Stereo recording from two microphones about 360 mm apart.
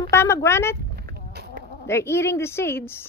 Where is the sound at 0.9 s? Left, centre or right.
Right.